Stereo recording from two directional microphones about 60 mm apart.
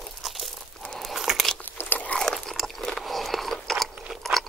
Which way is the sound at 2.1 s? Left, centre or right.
Centre.